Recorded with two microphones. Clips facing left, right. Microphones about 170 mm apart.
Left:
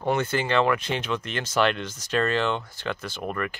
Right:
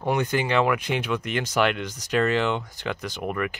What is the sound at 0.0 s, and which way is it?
Speech, 15° right (ahead or behind).